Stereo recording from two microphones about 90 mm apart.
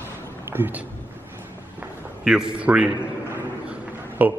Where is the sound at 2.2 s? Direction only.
10° right (ahead or behind).